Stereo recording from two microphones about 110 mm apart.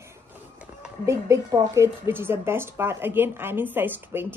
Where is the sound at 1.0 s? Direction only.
25° right (ahead or behind).